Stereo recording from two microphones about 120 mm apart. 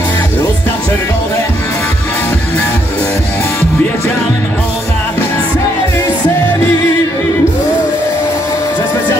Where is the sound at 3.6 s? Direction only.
25° left (ahead or behind).